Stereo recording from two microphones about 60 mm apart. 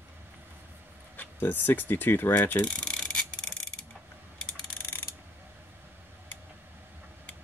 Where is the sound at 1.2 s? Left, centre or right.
Left.